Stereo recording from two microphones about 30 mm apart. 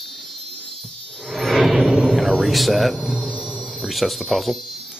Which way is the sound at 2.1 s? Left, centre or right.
Centre.